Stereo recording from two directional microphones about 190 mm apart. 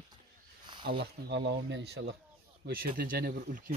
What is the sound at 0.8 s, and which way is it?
Speech, 55° right (ahead or behind).